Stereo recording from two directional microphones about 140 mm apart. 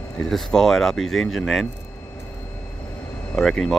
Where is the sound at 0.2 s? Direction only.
5° left (ahead or behind).